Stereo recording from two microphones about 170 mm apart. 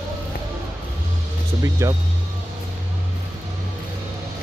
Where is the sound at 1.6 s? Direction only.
20° right (ahead or behind).